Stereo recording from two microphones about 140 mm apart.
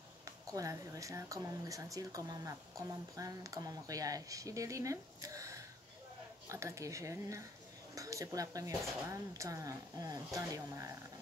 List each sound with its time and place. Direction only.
0.2 s speech: 25° right (ahead or behind)